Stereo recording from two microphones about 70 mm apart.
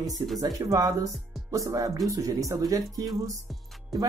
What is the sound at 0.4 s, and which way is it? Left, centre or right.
Speech, right.